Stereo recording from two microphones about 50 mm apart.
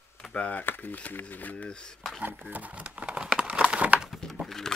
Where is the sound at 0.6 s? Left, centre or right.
Left.